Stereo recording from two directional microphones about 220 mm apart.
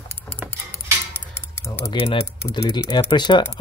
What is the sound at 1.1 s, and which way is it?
Typing, 10° left (ahead or behind).